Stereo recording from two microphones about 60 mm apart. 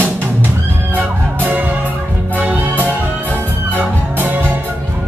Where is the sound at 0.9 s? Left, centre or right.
Right.